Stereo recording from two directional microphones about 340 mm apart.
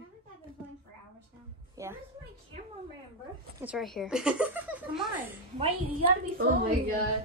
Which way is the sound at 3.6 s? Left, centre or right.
Centre.